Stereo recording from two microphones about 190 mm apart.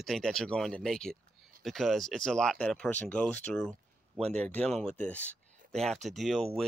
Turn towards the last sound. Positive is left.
turn(degrees=0)  # may be behind; listen again after turning